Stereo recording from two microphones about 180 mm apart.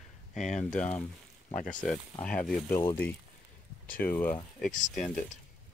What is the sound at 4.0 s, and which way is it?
Speech, 10° left (ahead or behind).